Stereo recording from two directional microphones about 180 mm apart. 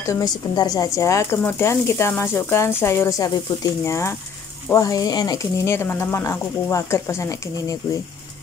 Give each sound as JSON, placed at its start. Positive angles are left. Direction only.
{"t": 0.0, "sound": "a woman's voice", "side_deg": 15}